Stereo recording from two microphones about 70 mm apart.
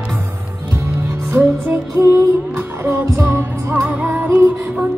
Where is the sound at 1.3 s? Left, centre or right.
Right.